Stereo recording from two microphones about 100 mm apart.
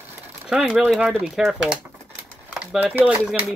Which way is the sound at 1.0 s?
15° right (ahead or behind).